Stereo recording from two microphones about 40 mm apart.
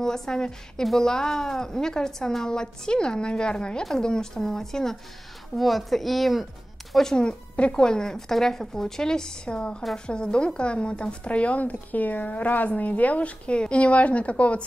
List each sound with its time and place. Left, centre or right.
0.0 s a woman's voice: centre
7.2 s a woman's voice: left